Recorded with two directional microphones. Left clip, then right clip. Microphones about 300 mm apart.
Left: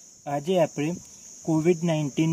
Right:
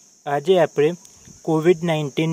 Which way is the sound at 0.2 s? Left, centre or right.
Right.